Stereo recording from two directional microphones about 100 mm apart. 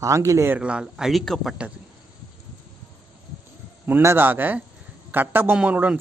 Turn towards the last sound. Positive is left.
turn(degrees=-15)  # may be behind; listen again after turning